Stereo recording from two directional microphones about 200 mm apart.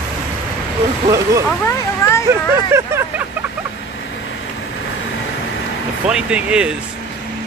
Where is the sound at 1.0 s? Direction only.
15° right (ahead or behind).